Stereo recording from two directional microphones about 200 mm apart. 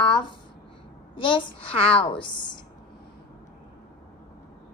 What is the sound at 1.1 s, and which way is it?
Speech, 25° left (ahead or behind).